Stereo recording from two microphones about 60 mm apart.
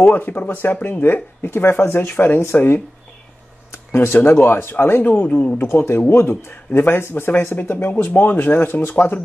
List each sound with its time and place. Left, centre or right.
0.1 s speech: left
7.7 s speech: left